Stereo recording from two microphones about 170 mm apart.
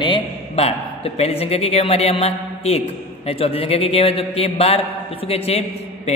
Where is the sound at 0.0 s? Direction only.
30° left (ahead or behind).